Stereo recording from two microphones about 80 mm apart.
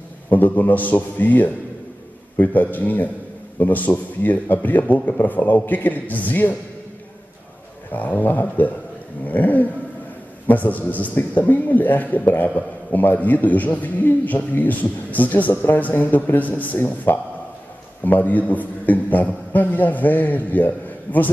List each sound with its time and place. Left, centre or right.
0.3 s a man's voice: left
7.9 s a man's voice: left